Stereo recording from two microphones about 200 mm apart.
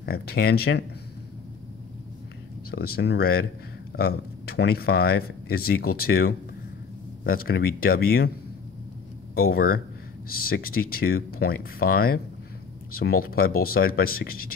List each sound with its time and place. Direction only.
0.0 s speech: 50° left (ahead or behind)
2.7 s speech: 50° left (ahead or behind)
9.3 s speech: 50° left (ahead or behind)